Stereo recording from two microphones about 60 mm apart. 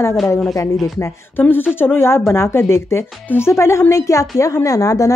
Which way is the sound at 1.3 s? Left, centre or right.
Left.